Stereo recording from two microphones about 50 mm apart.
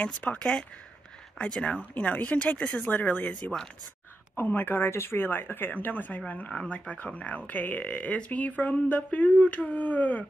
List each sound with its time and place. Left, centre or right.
0.0 s speech: left
1.6 s speech: left
2.3 s speech: left
2.9 s speech: left